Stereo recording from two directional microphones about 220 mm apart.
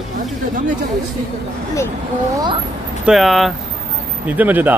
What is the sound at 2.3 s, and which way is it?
Speech, 20° right (ahead or behind).